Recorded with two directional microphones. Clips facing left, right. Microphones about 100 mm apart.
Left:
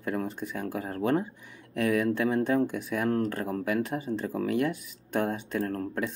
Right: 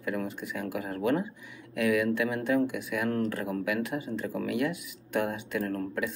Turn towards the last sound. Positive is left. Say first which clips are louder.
# even
turn(degrees=35)  # may be behind; listen again after turning